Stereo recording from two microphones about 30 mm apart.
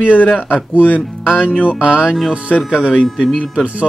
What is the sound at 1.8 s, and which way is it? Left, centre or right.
Speech, right.